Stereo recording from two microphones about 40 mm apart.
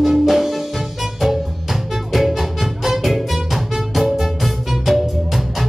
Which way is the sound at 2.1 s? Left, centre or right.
Centre.